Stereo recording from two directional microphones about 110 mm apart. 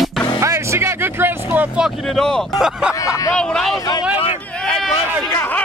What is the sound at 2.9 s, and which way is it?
Hubbub, 30° left (ahead or behind).